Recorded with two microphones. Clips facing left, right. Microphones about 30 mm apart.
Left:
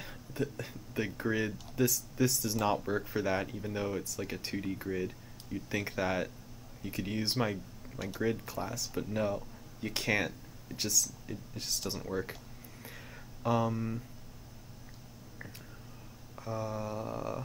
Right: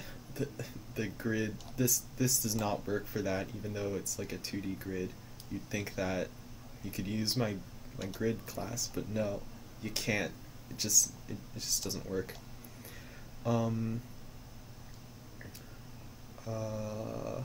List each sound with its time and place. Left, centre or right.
0.0 s speech: centre
2.5 s speech: centre
13.4 s speech: centre
16.4 s speech: left